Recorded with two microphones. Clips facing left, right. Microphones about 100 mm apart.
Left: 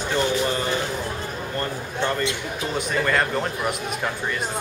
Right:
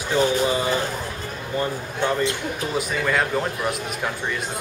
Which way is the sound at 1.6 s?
10° right (ahead or behind).